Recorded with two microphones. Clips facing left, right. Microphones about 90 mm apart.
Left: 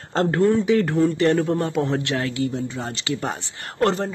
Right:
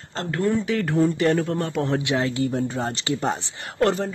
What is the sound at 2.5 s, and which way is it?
Speech, 40° right (ahead or behind).